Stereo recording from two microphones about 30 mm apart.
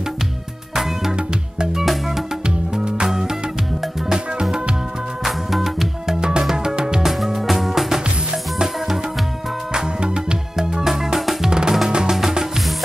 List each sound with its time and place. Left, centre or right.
0.7 s music: centre
2.4 s music: right
5.2 s music: centre
6.0 s music: right
7.3 s music: centre
9.7 s music: right